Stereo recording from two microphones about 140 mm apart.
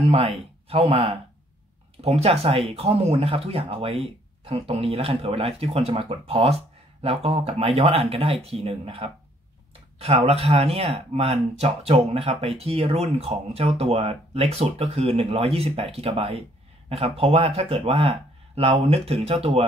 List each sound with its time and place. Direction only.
0.0 s speech: 45° right (ahead or behind)